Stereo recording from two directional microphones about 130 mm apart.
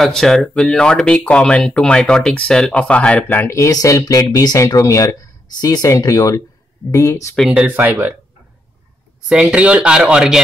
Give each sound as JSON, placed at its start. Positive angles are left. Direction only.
{"t": 0.0, "sound": "speech", "side_deg": 5}
{"t": 7.3, "sound": "speech", "side_deg": -5}
{"t": 9.3, "sound": "speech", "side_deg": -10}